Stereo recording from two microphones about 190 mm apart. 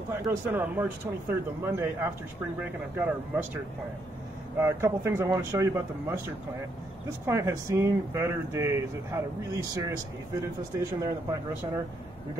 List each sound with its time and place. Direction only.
0.1 s speech: 15° right (ahead or behind)
4.6 s speech: 15° right (ahead or behind)
7.2 s speech: 15° right (ahead or behind)